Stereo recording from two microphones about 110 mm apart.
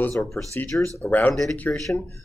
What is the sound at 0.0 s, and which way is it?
Speech, 25° left (ahead or behind).